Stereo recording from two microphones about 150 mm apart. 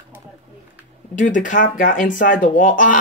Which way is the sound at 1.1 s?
60° left (ahead or behind).